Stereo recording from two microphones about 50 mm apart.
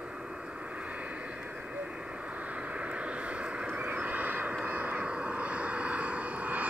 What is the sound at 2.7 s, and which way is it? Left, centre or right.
Vehicle, right.